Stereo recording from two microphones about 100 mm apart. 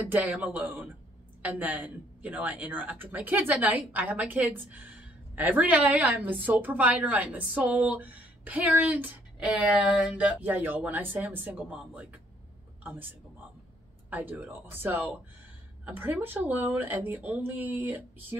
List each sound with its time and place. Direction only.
0.1 s speech: 15° right (ahead or behind)
14.1 s speech: 20° right (ahead or behind)